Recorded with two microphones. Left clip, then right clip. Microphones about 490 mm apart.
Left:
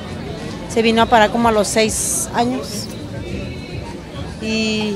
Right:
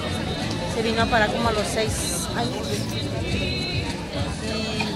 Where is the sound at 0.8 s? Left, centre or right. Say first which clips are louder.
Left 8 dB; left.